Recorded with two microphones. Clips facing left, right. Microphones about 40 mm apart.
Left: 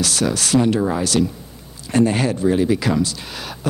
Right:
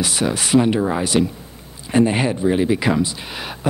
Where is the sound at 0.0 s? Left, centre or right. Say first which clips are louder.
Even; centre.